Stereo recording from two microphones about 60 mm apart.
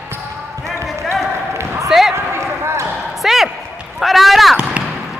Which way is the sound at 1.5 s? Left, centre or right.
Right.